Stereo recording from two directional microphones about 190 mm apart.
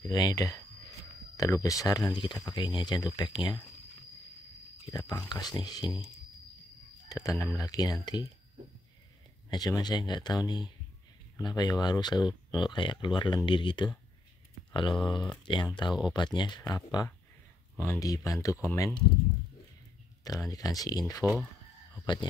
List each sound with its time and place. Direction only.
0.0 s speech: 20° left (ahead or behind)
4.8 s speech: 20° left (ahead or behind)
7.1 s speech: 20° left (ahead or behind)
9.5 s speech: 20° left (ahead or behind)
20.2 s speech: 20° left (ahead or behind)
21.2 s speech: 10° right (ahead or behind)
22.0 s speech: 25° left (ahead or behind)